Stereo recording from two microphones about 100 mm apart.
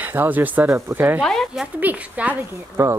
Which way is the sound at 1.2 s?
5° left (ahead or behind).